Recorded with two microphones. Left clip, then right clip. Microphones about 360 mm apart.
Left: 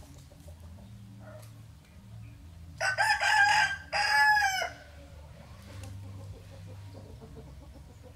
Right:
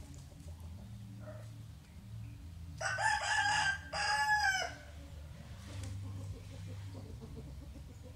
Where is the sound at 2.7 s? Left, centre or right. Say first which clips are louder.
Left 7 dB; left.